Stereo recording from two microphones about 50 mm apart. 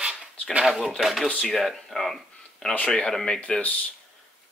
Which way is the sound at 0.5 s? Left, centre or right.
Centre.